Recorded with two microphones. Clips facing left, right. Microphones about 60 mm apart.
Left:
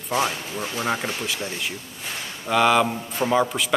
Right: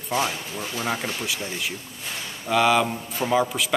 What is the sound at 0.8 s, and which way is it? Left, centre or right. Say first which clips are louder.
Speech: left 2 dB; centre.